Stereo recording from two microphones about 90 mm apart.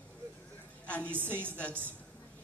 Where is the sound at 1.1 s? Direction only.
25° right (ahead or behind).